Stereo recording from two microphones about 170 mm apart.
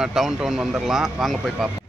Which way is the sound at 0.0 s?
Centre (ahead or behind).